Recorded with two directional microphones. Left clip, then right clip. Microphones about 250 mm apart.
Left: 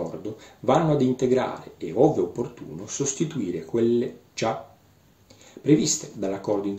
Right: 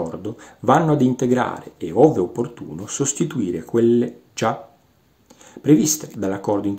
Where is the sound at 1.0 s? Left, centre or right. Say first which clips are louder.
Right 3 dB; right.